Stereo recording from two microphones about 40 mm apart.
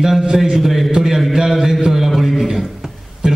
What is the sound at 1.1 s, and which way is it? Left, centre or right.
A man's voice, centre.